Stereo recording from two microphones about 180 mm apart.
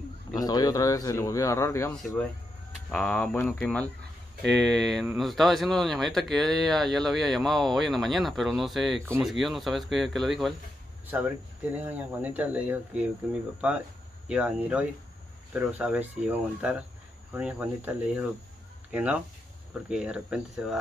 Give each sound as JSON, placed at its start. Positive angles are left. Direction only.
{"t": 0.3, "sound": "speech", "side_deg": 20}
{"t": 1.9, "sound": "speech", "side_deg": 5}